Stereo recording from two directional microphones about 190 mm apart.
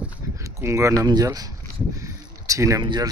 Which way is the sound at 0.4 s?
15° right (ahead or behind).